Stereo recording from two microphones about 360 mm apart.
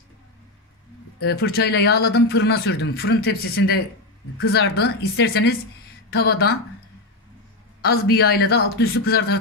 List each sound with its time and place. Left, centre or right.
1.2 s a man's voice: left
7.8 s a man's voice: left